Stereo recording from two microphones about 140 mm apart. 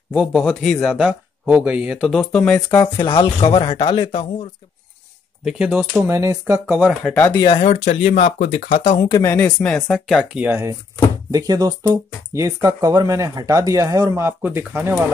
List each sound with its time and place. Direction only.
0.1 s speech: centre (ahead or behind)
2.0 s speech: 5° left (ahead or behind)
2.7 s speech: 30° left (ahead or behind)
5.4 s speech: 5° right (ahead or behind)
6.0 s speech: 20° right (ahead or behind)
6.8 s speech: centre (ahead or behind)
7.5 s speech: 55° left (ahead or behind)
9.1 s speech: 15° left (ahead or behind)
9.9 s speech: centre (ahead or behind)
10.3 s speech: 15° right (ahead or behind)